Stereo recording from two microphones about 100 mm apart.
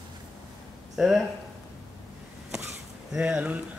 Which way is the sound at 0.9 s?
5° right (ahead or behind).